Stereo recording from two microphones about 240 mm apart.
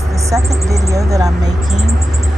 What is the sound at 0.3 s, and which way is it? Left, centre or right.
Speech, centre.